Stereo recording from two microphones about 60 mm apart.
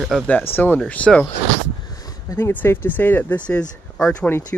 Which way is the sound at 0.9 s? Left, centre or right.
Centre.